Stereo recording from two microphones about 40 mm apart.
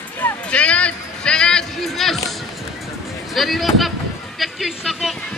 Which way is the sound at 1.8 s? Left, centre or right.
Centre.